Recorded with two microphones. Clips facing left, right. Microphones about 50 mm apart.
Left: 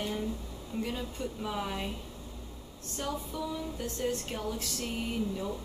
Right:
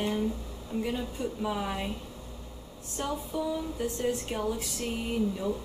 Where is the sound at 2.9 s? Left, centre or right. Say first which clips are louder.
Right 3 dB; centre.